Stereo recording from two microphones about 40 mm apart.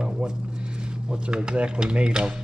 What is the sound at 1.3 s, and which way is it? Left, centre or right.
Speech, right.